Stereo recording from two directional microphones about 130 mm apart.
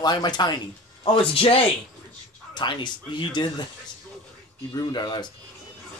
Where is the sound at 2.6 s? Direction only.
35° left (ahead or behind).